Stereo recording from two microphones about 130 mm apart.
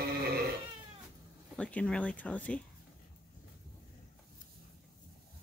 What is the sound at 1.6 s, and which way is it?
Speech, 10° left (ahead or behind).